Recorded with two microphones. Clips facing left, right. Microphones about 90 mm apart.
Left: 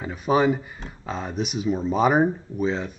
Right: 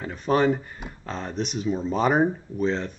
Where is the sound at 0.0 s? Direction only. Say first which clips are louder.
Left 1 dB; 5° left (ahead or behind).